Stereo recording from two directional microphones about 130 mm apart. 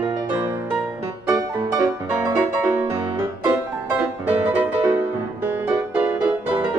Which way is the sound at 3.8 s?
10° right (ahead or behind).